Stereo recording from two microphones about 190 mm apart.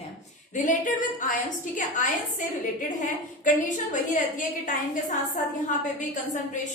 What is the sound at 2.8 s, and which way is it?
A woman's voice, 40° left (ahead or behind).